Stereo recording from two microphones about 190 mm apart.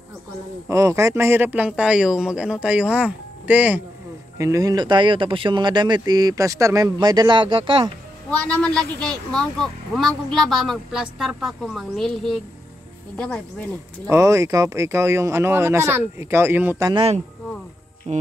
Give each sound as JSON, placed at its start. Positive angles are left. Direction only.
{"t": 0.7, "sound": "speech", "side_deg": -15}
{"t": 8.3, "sound": "speech", "side_deg": 5}
{"t": 14.0, "sound": "speech", "side_deg": -15}
{"t": 16.9, "sound": "speech", "side_deg": -30}